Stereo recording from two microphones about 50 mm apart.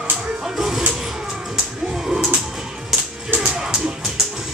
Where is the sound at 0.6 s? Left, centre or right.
Centre.